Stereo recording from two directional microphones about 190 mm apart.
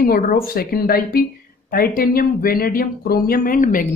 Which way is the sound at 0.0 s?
50° left (ahead or behind).